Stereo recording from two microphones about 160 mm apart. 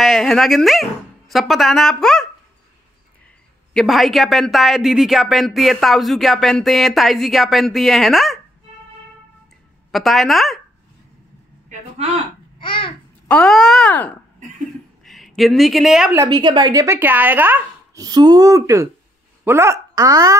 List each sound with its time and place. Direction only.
0.0 s speech: centre (ahead or behind)
3.7 s speech: centre (ahead or behind)
9.8 s speech: centre (ahead or behind)
11.7 s speech: 45° right (ahead or behind)
12.5 s babbling: 30° left (ahead or behind)
13.3 s speech: centre (ahead or behind)
16.2 s speech: 25° right (ahead or behind)
16.8 s speech: 15° right (ahead or behind)
18.0 s speech: 25° right (ahead or behind)